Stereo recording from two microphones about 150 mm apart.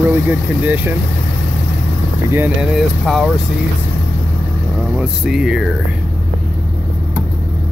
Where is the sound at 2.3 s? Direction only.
15° right (ahead or behind).